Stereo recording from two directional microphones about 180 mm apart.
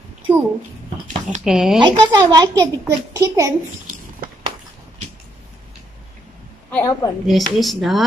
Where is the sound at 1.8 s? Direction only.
25° right (ahead or behind).